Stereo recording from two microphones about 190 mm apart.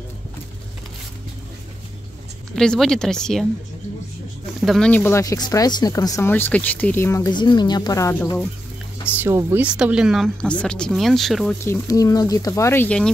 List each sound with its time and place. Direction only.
2.5 s speech: 5° left (ahead or behind)
4.6 s speech: 5° left (ahead or behind)
9.2 s speech: 15° right (ahead or behind)
11.5 s speech: 15° left (ahead or behind)